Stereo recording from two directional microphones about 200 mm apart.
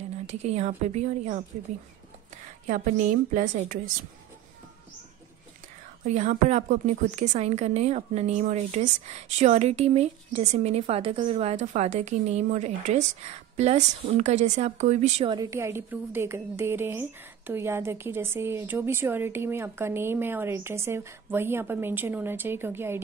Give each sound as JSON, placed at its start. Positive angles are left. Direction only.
{"t": 0.3, "sound": "a woman's voice", "side_deg": -35}
{"t": 2.6, "sound": "a woman's voice", "side_deg": -40}
{"t": 6.0, "sound": "a woman's voice", "side_deg": -35}
{"t": 15.3, "sound": "a woman's voice", "side_deg": -15}